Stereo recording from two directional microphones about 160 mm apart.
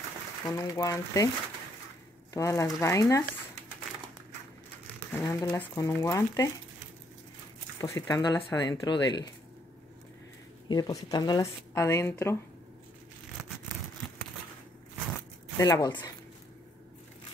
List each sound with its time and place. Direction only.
0.5 s speech: 20° left (ahead or behind)
2.3 s speech: 20° left (ahead or behind)
5.1 s speech: 15° left (ahead or behind)
7.8 s speech: 20° left (ahead or behind)
10.7 s speech: 25° left (ahead or behind)
14.0 s a sound: 10° left (ahead or behind)
15.5 s speech: 20° left (ahead or behind)